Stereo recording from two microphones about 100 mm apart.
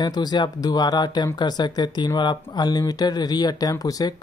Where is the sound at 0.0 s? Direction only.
45° left (ahead or behind).